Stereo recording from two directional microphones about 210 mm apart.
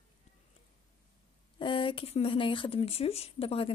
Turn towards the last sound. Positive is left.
turn(degrees=30)  # may be behind; listen again after turning